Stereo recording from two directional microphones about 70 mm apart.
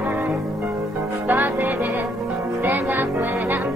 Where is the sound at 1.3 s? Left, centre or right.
Right.